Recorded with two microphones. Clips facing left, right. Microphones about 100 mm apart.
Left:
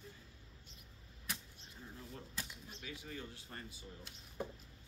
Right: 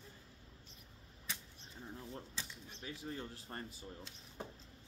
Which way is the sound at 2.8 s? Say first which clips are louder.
Right 3 dB; 35° right (ahead or behind).